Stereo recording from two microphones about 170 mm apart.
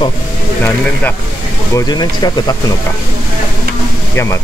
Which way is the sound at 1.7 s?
25° left (ahead or behind).